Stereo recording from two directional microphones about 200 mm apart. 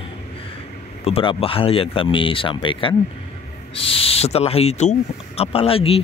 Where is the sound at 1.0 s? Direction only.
30° left (ahead or behind).